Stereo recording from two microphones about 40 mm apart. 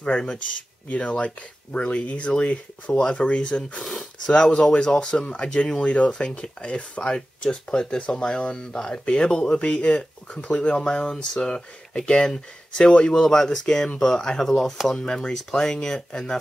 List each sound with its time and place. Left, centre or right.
0.0 s speech: left
3.8 s speech: centre
4.3 s speech: left
7.2 s speech: centre
13.1 s speech: centre